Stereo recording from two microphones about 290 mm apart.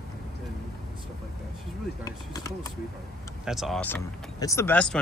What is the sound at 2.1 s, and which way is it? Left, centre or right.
Speech, centre.